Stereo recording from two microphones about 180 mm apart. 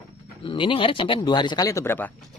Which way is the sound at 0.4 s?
30° left (ahead or behind).